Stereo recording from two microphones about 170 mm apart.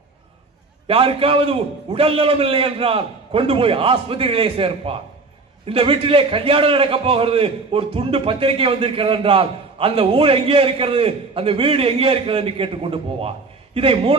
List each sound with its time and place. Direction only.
0.8 s a man's voice: 35° right (ahead or behind)